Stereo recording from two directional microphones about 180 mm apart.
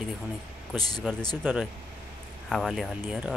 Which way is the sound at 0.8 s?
20° left (ahead or behind).